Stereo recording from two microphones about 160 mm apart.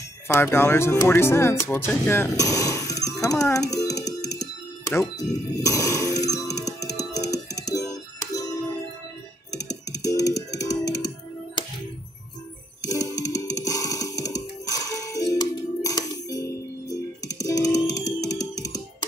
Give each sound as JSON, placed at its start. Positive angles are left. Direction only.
{"t": 0.3, "sound": "a child's voice", "side_deg": 15}
{"t": 4.2, "sound": "music", "side_deg": 20}
{"t": 9.6, "sound": "music", "side_deg": 20}
{"t": 12.8, "sound": "music", "side_deg": 20}